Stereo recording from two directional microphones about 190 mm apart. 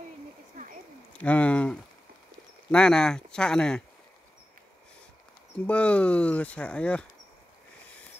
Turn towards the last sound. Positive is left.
turn(degrees=5)  # may be behind; listen again after turning